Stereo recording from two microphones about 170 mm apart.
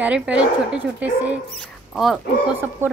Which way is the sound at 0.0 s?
5° right (ahead or behind).